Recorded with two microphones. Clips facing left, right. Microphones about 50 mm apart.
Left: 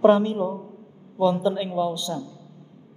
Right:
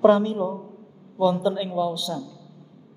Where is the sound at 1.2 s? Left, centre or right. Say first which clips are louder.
Even; left.